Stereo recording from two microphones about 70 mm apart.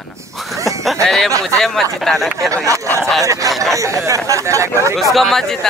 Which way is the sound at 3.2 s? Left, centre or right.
Right.